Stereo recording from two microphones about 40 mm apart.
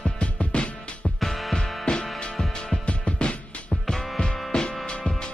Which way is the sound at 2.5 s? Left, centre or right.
Left.